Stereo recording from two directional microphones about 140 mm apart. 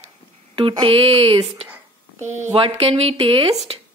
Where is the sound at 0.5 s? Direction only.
35° right (ahead or behind).